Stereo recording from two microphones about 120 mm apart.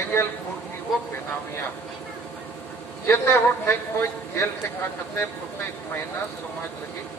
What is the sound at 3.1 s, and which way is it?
Speech, 20° left (ahead or behind).